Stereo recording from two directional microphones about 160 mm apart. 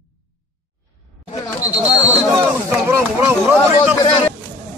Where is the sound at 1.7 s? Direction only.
10° right (ahead or behind).